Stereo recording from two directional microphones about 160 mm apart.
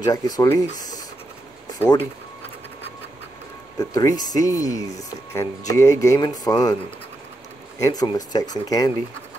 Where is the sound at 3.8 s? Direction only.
20° left (ahead or behind).